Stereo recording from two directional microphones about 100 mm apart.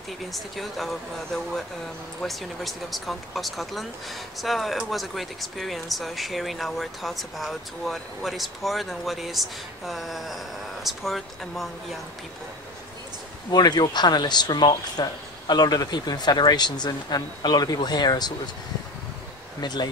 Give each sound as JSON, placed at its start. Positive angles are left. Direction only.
{"t": 0.3, "sound": "speech", "side_deg": 0}
{"t": 13.5, "sound": "speech", "side_deg": 45}
{"t": 19.6, "sound": "speech", "side_deg": 45}